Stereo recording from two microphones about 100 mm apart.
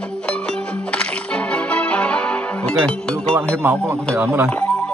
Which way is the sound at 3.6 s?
25° right (ahead or behind).